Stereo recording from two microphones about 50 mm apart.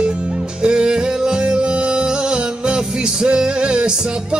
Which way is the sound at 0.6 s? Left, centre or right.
Centre.